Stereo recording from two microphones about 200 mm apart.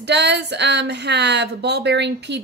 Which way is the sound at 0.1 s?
60° right (ahead or behind).